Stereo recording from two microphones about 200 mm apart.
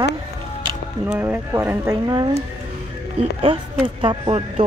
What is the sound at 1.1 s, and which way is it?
Speech, 10° right (ahead or behind).